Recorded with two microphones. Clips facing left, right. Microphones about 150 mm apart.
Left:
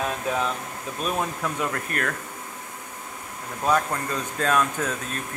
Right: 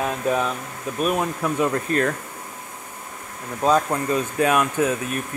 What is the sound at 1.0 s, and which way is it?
Speech, 10° right (ahead or behind).